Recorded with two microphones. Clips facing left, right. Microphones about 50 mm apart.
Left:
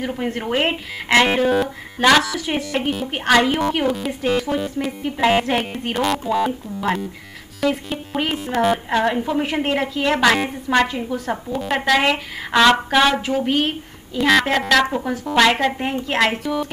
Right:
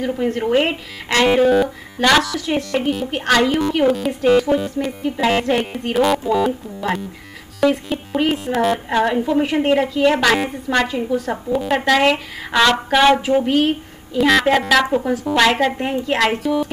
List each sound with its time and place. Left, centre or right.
0.3 s a woman's voice: centre
0.7 s speech: centre
1.4 s a woman's voice: centre
3.8 s a woman's voice: centre